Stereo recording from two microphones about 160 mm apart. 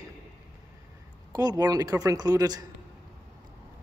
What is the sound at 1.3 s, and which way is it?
A man's voice, 25° right (ahead or behind).